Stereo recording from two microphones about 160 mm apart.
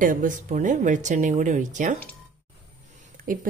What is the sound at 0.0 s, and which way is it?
Speech, 55° right (ahead or behind).